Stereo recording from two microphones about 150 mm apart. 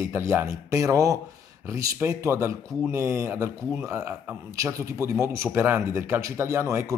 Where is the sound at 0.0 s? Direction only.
20° right (ahead or behind).